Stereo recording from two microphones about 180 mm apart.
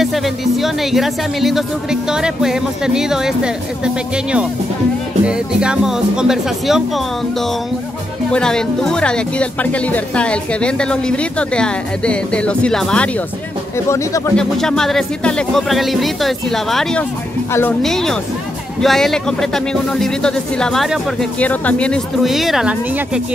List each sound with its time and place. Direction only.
0.0 s speech: centre (ahead or behind)
13.7 s speech: 15° left (ahead or behind)
14.3 s speech: 5° left (ahead or behind)
17.5 s speech: 15° left (ahead or behind)
17.8 s speech: centre (ahead or behind)